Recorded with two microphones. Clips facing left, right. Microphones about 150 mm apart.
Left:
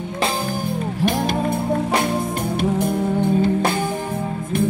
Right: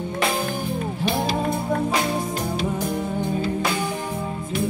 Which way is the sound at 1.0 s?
50° left (ahead or behind).